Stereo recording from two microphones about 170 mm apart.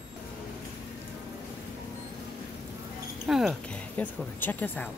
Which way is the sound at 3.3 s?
5° right (ahead or behind).